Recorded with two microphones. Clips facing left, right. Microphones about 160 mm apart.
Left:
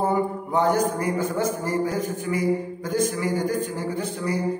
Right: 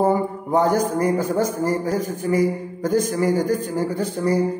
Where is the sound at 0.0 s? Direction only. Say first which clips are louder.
Right 4 dB; 40° right (ahead or behind).